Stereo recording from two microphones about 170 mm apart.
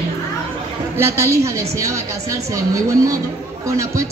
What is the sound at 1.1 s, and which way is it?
A woman's voice, 15° right (ahead or behind).